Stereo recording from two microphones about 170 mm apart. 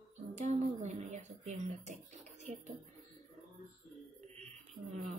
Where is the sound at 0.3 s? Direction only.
40° right (ahead or behind).